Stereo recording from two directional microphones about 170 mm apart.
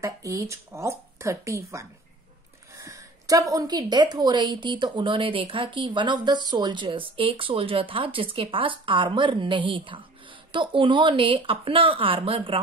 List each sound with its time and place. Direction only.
0.0 s speech: 20° right (ahead or behind)
2.7 s a sound: 20° right (ahead or behind)
3.5 s speech: 25° right (ahead or behind)